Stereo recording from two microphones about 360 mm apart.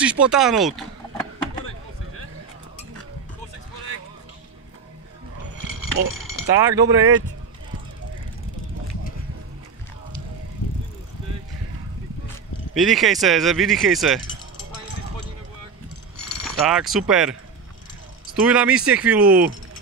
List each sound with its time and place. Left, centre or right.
0.0 s speech: centre
6.0 s speech: right
6.6 s speech: centre
12.7 s speech: centre
16.4 s speech: centre